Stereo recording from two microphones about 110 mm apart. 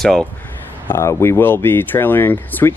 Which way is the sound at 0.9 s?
25° left (ahead or behind).